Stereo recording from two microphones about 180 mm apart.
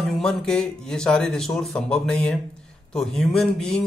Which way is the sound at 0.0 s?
Centre (ahead or behind).